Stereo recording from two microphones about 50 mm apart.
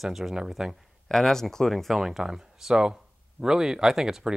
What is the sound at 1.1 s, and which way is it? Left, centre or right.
Speech, centre.